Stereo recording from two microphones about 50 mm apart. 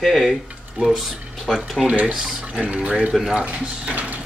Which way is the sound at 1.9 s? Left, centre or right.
Right.